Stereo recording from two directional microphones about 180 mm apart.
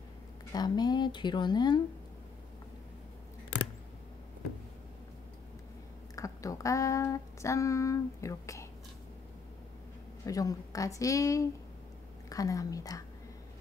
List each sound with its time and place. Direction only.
0.5 s speech: 20° left (ahead or behind)
6.1 s speech: 20° left (ahead or behind)
10.2 s speech: 20° left (ahead or behind)